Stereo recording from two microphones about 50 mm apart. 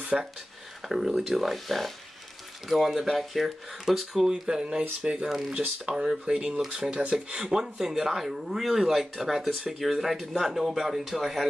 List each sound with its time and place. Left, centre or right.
0.1 s speech: centre
4.3 s speech: centre